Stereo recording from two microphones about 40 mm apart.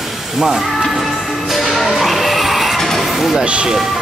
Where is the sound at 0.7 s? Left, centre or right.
Centre.